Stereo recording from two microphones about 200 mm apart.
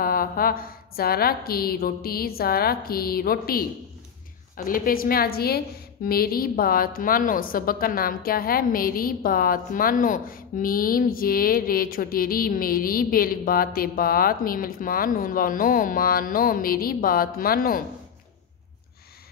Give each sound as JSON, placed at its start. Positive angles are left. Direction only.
{"t": 0.0, "sound": "a woman's voice", "side_deg": 45}